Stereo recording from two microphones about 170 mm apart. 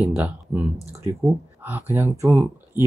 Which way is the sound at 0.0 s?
10° right (ahead or behind).